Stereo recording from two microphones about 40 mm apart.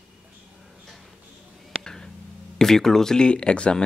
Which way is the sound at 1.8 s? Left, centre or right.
Centre.